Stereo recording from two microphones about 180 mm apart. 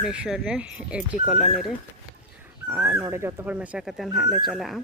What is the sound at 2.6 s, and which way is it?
Speech, 10° right (ahead or behind).